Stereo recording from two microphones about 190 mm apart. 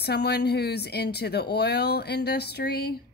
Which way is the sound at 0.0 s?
60° left (ahead or behind).